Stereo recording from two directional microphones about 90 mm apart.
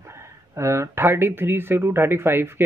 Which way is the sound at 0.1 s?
30° right (ahead or behind).